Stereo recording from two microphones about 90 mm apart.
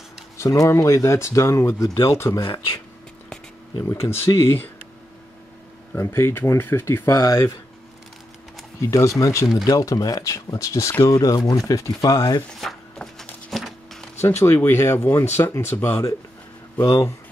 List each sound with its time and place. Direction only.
0.4 s speech: 35° left (ahead or behind)
3.8 s speech: 35° left (ahead or behind)
5.9 s speech: 30° left (ahead or behind)
7.2 s speech: 40° left (ahead or behind)
8.8 s speech: 35° left (ahead or behind)
12.4 s a sound: 5° left (ahead or behind)
14.2 s speech: 30° left (ahead or behind)
16.8 s speech: 35° left (ahead or behind)